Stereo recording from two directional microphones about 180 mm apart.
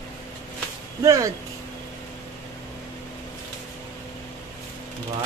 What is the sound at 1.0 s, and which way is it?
Speech, 15° right (ahead or behind).